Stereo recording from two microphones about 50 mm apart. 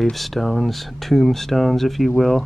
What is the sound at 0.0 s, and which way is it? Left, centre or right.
Speech, centre.